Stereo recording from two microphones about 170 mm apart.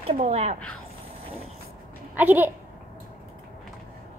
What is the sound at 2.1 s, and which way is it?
Child singing, 10° right (ahead or behind).